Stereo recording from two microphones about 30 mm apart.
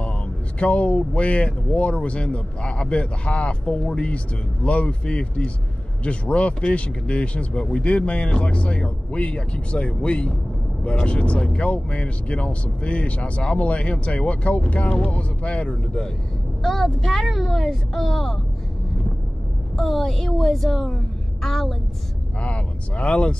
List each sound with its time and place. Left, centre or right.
0.6 s speech: left
16.6 s speech: centre
19.8 s a woman's voice: centre
22.4 s speech: left